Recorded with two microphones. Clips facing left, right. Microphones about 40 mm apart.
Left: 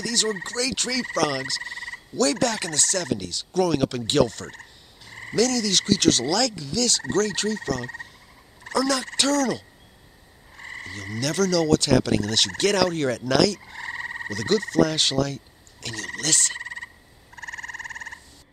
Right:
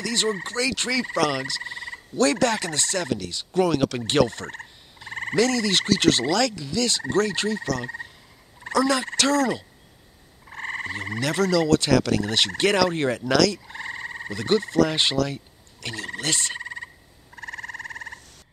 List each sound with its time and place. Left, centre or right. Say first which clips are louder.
0.0 s fowl: right 1 dB; right
1.2 s speech: right 1 dB; right
2.7 s fowl: even; right
4.0 s frog: even; right
6.6 s fowl: even; right
8.6 s fowl: right 2 dB; right
10.5 s frog: right 6 dB; right
11.9 s fowl: even; centre
12.2 s fowl: right 1 dB; right
13.5 s frog: even; centre
13.8 s frog: left 3 dB; centre
14.3 s fowl: right 1 dB; right
15.2 s frog: right 1 dB; right
16.5 s frog: even; centre